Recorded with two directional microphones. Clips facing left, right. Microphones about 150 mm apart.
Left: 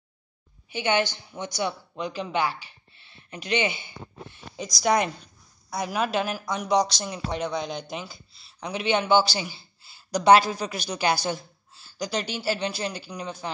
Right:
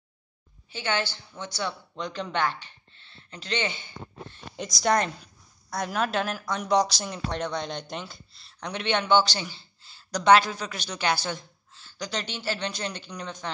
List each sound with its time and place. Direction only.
0.7 s speech: 15° left (ahead or behind)